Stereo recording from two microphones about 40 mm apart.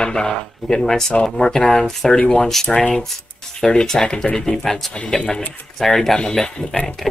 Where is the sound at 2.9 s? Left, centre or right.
Centre.